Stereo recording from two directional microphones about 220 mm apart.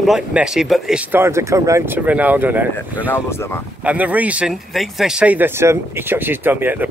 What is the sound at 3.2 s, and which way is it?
Speech, 10° left (ahead or behind).